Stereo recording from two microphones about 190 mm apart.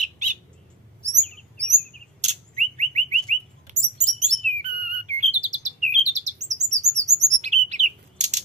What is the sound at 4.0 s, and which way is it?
Chirp, 40° right (ahead or behind).